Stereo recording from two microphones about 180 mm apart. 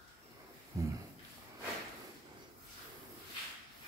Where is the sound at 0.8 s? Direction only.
15° right (ahead or behind).